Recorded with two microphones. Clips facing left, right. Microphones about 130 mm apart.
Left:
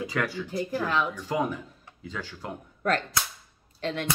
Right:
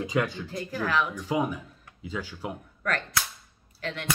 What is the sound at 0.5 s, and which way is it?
Speech, 20° left (ahead or behind).